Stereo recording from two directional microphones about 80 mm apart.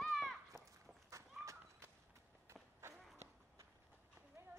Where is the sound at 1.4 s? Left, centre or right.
Right.